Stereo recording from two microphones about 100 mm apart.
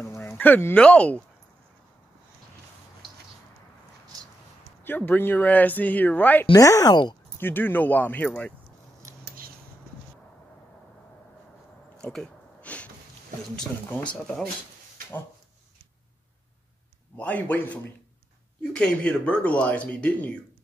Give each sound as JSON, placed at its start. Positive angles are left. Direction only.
{"t": 0.0, "sound": "a sound", "side_deg": 25}
{"t": 0.7, "sound": "speech", "side_deg": 10}
{"t": 4.8, "sound": "speech", "side_deg": 20}
{"t": 6.5, "sound": "speech", "side_deg": 35}
{"t": 7.3, "sound": "speech", "side_deg": 20}
{"t": 12.0, "sound": "a sound", "side_deg": 5}
{"t": 13.6, "sound": "speech", "side_deg": 15}
{"t": 17.2, "sound": "speech", "side_deg": 15}